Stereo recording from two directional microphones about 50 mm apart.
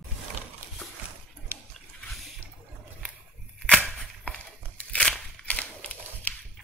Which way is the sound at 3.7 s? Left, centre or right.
Centre.